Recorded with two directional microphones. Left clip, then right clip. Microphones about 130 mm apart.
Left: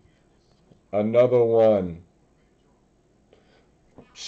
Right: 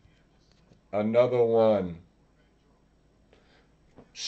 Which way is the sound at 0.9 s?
10° left (ahead or behind).